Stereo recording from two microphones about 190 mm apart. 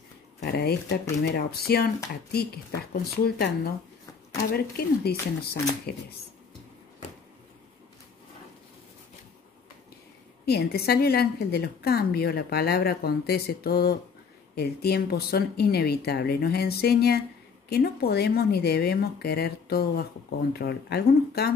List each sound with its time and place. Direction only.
0.4 s speech: 55° left (ahead or behind)
10.4 s speech: 55° left (ahead or behind)